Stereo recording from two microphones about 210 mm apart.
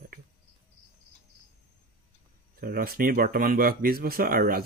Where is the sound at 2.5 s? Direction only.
45° right (ahead or behind).